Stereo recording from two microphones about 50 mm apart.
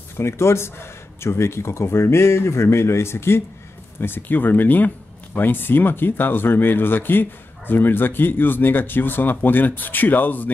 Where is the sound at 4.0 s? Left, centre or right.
Left.